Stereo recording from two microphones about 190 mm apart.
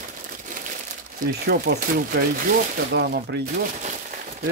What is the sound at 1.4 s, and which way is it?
Speech, 60° right (ahead or behind).